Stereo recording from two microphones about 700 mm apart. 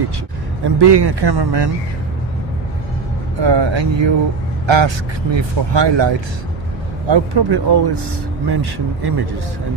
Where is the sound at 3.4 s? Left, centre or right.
Right.